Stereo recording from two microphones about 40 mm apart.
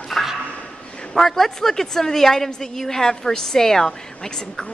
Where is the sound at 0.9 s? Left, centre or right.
Left.